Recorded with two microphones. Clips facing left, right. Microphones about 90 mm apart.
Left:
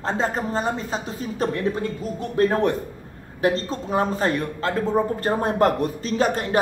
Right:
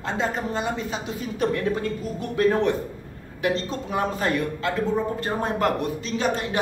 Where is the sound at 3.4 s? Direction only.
35° left (ahead or behind).